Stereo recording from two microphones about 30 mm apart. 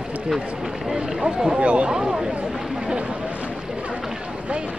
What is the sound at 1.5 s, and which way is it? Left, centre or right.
Speech, right.